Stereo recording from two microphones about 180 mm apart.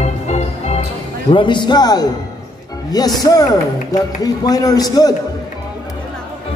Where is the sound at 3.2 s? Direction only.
20° left (ahead or behind).